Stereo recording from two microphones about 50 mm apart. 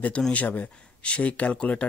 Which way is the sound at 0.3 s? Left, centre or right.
Left.